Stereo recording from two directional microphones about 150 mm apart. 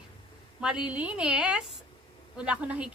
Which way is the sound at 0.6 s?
5° right (ahead or behind).